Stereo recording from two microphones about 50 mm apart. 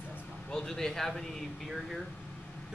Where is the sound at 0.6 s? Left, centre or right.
Centre.